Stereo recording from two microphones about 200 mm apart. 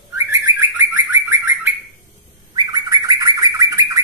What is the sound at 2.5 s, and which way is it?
Bird, 20° right (ahead or behind).